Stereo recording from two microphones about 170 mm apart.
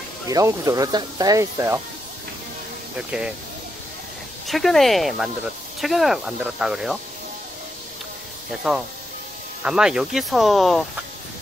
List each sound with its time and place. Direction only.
0.3 s speech: 20° right (ahead or behind)
3.0 s speech: 5° right (ahead or behind)
4.5 s speech: centre (ahead or behind)
8.5 s speech: 5° right (ahead or behind)